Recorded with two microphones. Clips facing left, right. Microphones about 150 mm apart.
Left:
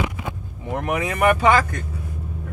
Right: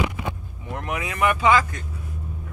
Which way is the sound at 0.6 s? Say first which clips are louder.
Left 6 dB; 45° left (ahead or behind).